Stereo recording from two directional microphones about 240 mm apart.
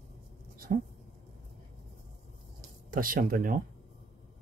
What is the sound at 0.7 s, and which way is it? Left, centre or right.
Speech, right.